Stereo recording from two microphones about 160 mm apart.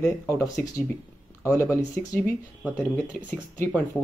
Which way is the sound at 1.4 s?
15° left (ahead or behind).